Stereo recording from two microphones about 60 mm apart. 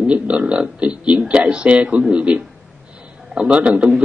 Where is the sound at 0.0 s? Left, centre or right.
Centre.